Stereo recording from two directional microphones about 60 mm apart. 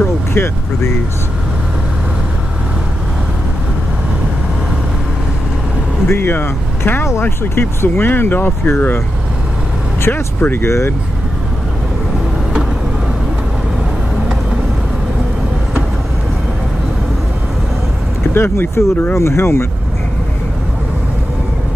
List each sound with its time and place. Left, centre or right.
0.0 s speech: left
6.0 s speech: left
10.4 s speech: left
18.3 s speech: left